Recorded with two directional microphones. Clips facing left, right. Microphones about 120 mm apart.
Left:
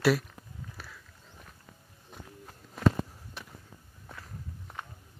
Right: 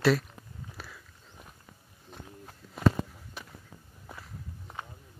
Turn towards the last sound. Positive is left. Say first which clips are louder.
# right 1 dB
turn(degrees=-10)  # may be behind; listen again after turning